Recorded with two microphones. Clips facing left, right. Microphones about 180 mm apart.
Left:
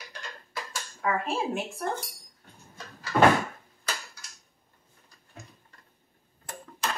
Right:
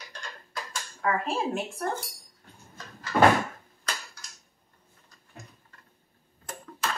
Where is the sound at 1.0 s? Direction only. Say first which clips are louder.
Right 1 dB; centre (ahead or behind).